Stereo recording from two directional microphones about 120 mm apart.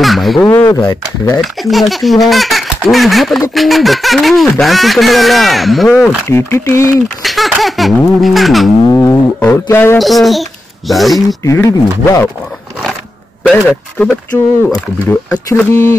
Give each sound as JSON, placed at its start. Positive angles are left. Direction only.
{"t": 0.0, "sound": "a sound", "side_deg": 0}
{"t": 0.4, "sound": "speech", "side_deg": 15}
{"t": 0.7, "sound": "speech", "side_deg": 30}
{"t": 1.4, "sound": "speech", "side_deg": 0}
{"t": 6.2, "sound": "speech", "side_deg": 20}
{"t": 7.2, "sound": "speech", "side_deg": 0}
{"t": 8.8, "sound": "speech", "side_deg": 20}
{"t": 9.9, "sound": "speech", "side_deg": 0}
{"t": 11.1, "sound": "speech", "side_deg": 30}
{"t": 13.4, "sound": "speech", "side_deg": 10}
{"t": 15.2, "sound": "speech", "side_deg": 30}